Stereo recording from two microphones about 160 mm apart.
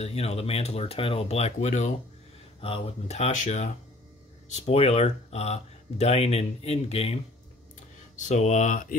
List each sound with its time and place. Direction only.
0.0 s speech: 40° left (ahead or behind)
8.2 s speech: 50° left (ahead or behind)